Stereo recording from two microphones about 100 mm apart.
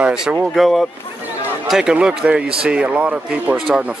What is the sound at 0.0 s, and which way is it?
Speech, 10° right (ahead or behind).